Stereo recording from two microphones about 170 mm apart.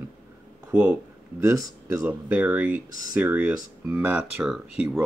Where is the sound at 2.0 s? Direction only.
5° right (ahead or behind).